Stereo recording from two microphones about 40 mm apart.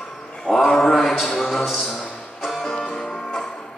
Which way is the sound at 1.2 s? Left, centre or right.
Centre.